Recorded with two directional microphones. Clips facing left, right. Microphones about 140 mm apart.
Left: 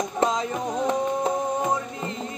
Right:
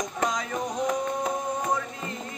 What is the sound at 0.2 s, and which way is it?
Music, 30° left (ahead or behind).